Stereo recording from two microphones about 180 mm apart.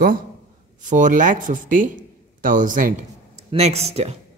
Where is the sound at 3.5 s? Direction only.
35° right (ahead or behind).